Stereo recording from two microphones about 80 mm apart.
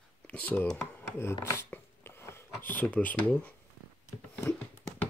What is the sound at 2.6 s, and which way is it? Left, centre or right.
Speech, centre.